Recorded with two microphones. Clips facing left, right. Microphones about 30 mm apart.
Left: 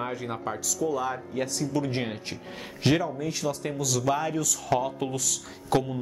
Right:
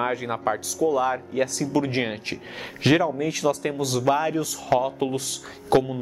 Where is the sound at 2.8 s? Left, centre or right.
Right.